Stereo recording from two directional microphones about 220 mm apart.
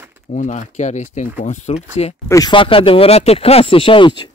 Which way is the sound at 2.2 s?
15° left (ahead or behind).